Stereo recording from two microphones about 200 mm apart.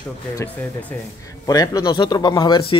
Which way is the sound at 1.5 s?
20° left (ahead or behind).